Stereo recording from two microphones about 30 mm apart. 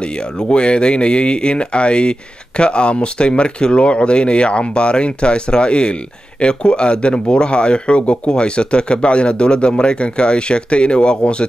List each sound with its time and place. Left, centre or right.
0.0 s speech: left